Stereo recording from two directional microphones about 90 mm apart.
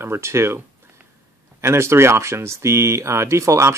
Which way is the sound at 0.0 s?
30° right (ahead or behind).